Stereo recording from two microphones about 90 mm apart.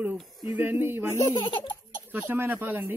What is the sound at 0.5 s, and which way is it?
Speech, 20° right (ahead or behind).